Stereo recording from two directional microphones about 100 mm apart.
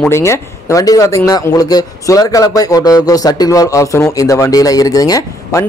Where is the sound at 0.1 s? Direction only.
30° left (ahead or behind).